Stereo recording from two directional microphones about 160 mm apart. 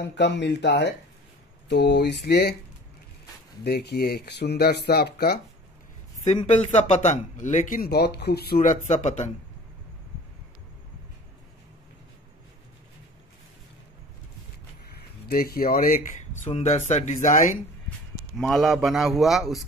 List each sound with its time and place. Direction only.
0.0 s speech: 90° left
3.6 s speech: 90° left
6.2 s a man's voice: 45° left (ahead or behind)
14.9 s speech: 80° left; by 16.0 s 65° left (ahead or behind)
16.4 s a man's voice: 45° left (ahead or behind)
17.8 s a man's voice: centre (ahead or behind)